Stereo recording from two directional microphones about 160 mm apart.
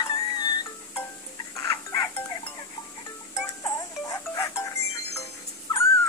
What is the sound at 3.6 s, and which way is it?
Music, 20° left (ahead or behind).